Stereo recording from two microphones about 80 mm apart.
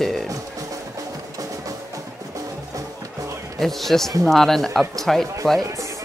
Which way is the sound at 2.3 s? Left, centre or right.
Right.